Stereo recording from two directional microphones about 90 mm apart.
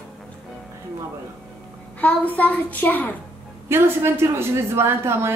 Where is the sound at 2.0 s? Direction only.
15° left (ahead or behind).